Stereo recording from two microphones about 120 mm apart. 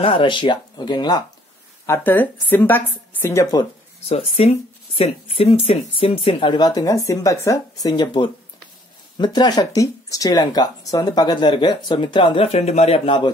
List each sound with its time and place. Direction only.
0.0 s speech: 50° left (ahead or behind)
1.9 s speech: 15° left (ahead or behind)
4.1 s speech: 55° left (ahead or behind)